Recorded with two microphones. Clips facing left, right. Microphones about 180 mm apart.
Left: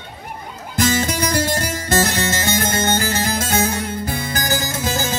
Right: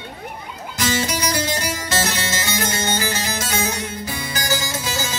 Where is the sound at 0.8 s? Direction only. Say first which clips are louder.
Left 3 dB; 50° left (ahead or behind).